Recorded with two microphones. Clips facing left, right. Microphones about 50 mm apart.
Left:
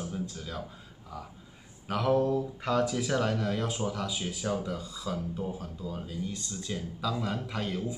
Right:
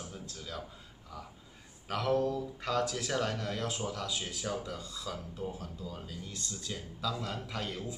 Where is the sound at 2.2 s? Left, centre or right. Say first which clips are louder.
Left 5 dB; left.